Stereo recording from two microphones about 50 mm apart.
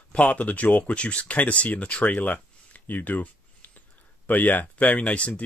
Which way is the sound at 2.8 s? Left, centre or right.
Left.